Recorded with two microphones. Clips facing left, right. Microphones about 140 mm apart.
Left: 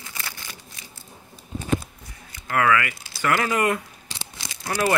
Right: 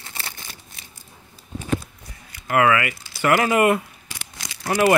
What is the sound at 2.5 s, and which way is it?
Speech, 15° right (ahead or behind).